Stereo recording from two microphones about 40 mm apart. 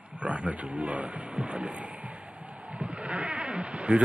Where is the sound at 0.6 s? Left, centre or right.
Right.